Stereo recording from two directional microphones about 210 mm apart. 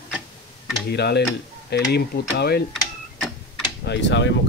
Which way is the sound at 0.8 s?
50° left (ahead or behind).